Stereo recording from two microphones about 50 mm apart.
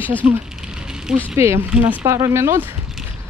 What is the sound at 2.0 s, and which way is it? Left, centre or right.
Speech, right.